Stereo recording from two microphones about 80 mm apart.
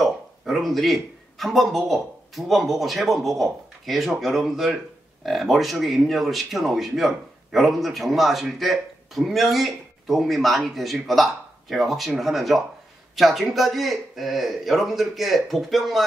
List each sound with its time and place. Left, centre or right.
0.0 s speech: centre